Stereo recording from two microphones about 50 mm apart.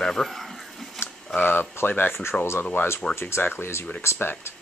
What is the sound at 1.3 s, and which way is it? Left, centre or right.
Speech, left.